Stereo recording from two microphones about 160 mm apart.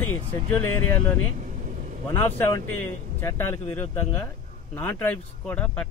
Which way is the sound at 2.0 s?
15° left (ahead or behind).